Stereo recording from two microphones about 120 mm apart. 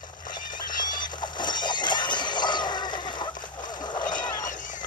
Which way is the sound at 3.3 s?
90° left.